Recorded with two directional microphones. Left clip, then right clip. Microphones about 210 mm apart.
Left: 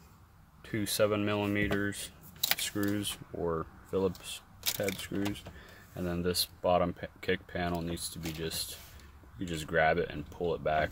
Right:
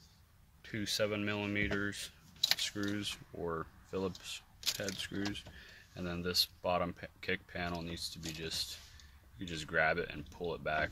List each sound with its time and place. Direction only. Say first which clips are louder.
0.7 s speech: left 6 dB; 25° left (ahead or behind)
2.4 s camera: left 1 dB; 25° left (ahead or behind)
2.8 s speech: left 5 dB; 20° left (ahead or behind)